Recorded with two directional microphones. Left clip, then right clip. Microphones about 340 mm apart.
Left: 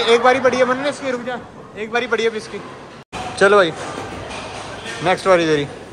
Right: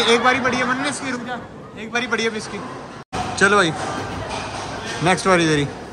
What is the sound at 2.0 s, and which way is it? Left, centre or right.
A man's voice, centre.